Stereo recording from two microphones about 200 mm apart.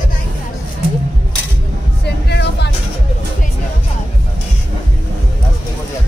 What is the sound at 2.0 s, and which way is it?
Music, 55° left (ahead or behind).